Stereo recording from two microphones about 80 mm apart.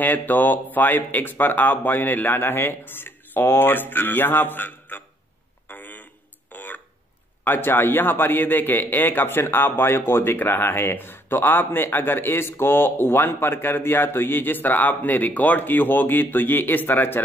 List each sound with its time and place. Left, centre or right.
0.0 s a man's voice: left
5.7 s a sound: left
7.4 s a man's voice: left